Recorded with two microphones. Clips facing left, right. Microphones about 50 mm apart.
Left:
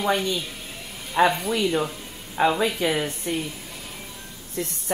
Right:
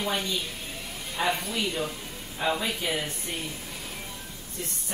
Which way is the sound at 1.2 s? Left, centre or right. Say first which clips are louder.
Left 8 dB; left.